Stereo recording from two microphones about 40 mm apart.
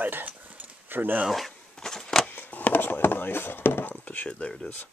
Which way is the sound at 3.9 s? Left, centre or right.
Left.